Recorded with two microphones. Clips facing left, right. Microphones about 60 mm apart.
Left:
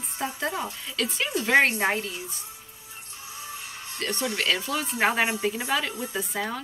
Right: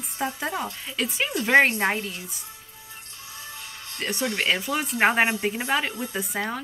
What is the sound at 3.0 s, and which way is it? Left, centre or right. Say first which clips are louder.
Music: left 3 dB; left.